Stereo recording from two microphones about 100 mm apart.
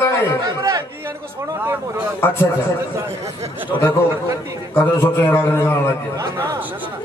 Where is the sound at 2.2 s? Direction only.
25° left (ahead or behind).